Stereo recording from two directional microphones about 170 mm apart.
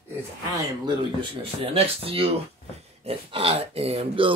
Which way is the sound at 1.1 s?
35° right (ahead or behind).